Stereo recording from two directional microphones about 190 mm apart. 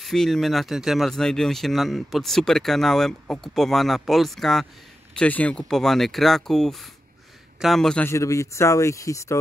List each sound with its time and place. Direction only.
0.0 s speech: centre (ahead or behind)